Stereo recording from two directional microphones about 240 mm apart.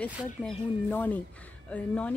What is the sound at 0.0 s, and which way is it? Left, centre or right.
Speech, centre.